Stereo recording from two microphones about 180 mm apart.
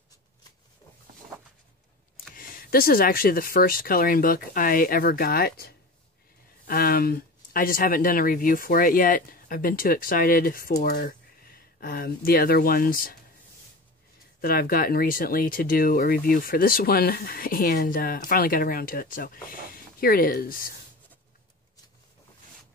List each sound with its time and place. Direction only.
2.3 s speech: 55° left (ahead or behind)
14.4 s speech: 55° left (ahead or behind)